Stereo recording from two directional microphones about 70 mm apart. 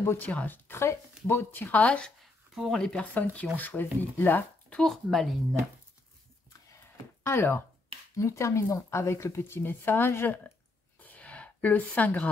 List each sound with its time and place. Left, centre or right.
0.2 s speech: left
0.7 s speech: left; by 2.1 s centre
2.5 s speech: centre
2.8 s speech: centre
4.6 s speech: centre
7.2 s speech: left
8.2 s speech: left
11.0 s a sound: left